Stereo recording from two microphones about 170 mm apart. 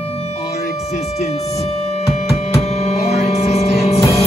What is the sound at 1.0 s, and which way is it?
Music, 40° left (ahead or behind).